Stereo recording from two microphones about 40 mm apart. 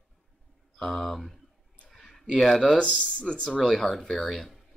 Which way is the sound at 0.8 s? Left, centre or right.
Centre.